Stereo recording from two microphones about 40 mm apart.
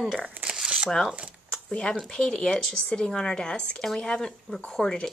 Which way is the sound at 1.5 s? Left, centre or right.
Left.